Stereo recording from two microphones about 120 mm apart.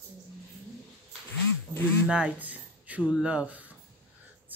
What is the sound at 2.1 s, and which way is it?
A woman's voice, 10° right (ahead or behind).